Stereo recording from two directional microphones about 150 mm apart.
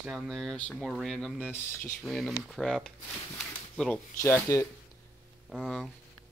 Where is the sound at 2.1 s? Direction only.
Centre (ahead or behind).